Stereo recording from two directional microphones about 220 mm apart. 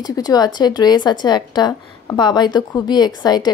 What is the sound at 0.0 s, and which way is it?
Speech, 15° left (ahead or behind).